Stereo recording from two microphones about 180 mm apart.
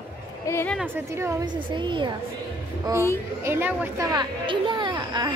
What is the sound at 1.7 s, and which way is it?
Speech, 25° right (ahead or behind).